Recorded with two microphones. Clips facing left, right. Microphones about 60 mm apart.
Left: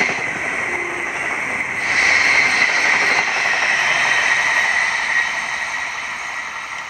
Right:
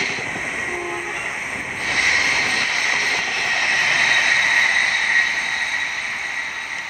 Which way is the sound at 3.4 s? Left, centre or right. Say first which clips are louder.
Left 2 dB; centre.